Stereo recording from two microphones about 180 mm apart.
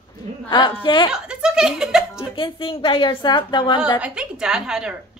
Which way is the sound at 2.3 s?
25° left (ahead or behind).